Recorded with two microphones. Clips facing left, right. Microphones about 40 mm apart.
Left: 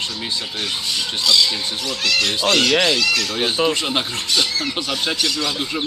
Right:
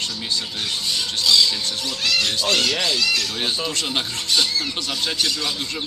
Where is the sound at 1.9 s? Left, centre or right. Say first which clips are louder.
Left 2 dB; left.